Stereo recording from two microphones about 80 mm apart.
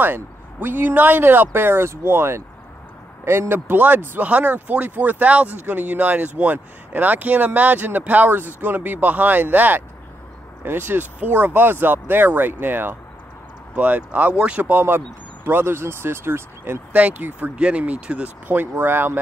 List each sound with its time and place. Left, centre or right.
0.0 s speech: right
16.9 s speech: centre